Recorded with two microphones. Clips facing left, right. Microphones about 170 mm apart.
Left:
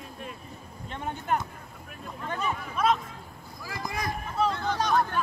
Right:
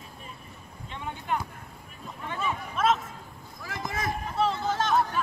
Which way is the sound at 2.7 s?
5° right (ahead or behind).